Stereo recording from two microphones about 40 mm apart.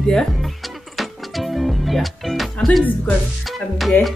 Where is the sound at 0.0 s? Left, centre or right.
Centre.